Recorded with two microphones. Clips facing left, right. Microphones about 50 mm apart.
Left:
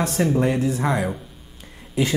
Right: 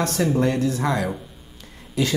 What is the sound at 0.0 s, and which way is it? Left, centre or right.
Speech, centre.